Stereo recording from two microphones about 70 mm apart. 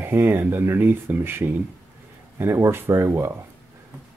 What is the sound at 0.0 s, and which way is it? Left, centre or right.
Speech, right.